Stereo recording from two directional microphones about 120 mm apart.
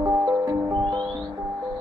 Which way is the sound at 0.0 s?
35° right (ahead or behind).